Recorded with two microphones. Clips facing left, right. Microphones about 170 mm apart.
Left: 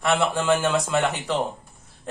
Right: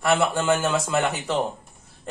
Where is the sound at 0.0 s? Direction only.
Centre (ahead or behind).